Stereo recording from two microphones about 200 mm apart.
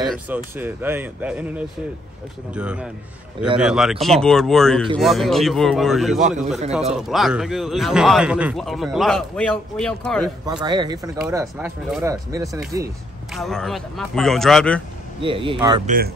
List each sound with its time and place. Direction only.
0.0 s a man's voice: centre (ahead or behind)
6.2 s a man's voice: 40° right (ahead or behind)
7.0 s a man's voice: centre (ahead or behind)
10.4 s speech: 20° right (ahead or behind)
11.5 s speech: 5° right (ahead or behind)
13.3 s a man's voice: centre (ahead or behind)
15.2 s speech: 25° right (ahead or behind)
15.9 s speech: 45° right (ahead or behind)